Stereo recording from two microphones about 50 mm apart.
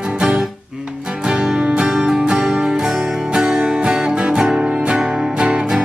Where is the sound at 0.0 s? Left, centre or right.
Centre.